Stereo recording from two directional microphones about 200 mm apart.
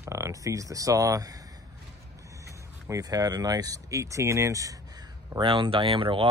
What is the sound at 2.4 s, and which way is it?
Speech, 15° right (ahead or behind).